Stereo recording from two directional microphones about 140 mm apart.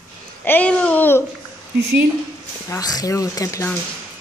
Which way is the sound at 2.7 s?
25° left (ahead or behind).